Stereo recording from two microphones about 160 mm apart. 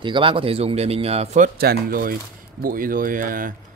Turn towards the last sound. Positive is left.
turn(degrees=-60)  # may be behind; listen again after turning